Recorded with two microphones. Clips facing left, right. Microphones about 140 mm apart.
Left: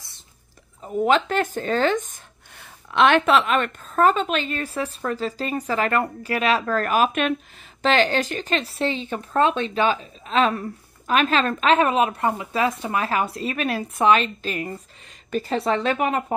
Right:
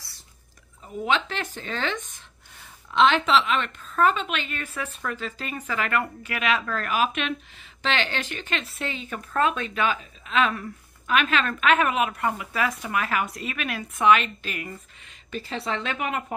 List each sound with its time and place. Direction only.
0.8 s speech: 45° left (ahead or behind)
2.9 s speech: 60° left (ahead or behind); by 14.8 s 35° left (ahead or behind)
15.3 s speech: 45° left (ahead or behind)